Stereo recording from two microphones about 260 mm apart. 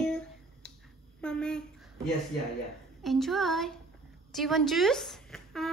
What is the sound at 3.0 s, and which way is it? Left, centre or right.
A woman's voice, centre.